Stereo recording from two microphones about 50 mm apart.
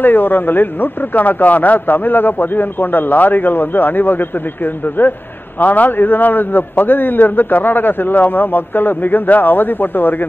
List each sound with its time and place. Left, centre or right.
0.0 s speech: left